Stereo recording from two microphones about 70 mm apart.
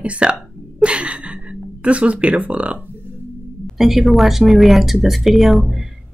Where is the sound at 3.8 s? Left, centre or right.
Centre.